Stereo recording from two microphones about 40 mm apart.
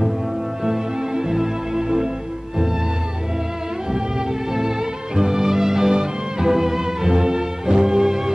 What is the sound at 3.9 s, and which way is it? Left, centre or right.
Music, centre.